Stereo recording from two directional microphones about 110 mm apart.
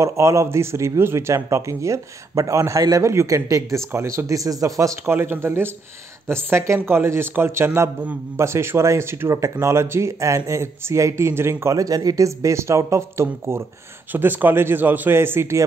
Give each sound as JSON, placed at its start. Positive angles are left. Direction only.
{"t": 0.0, "sound": "a man's voice", "side_deg": -25}